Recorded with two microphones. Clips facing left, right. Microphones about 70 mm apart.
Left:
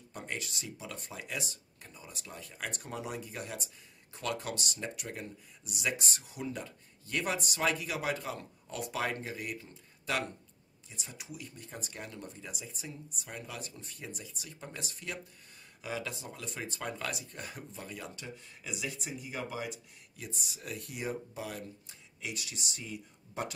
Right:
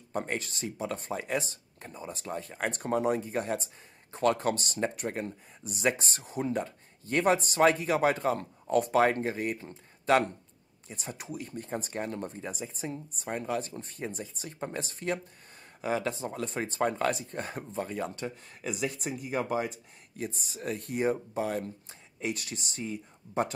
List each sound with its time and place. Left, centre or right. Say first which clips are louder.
0.1 s speech: right 8 dB; right